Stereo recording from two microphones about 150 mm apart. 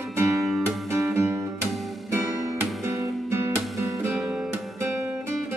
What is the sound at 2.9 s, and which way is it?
Music, 20° right (ahead or behind).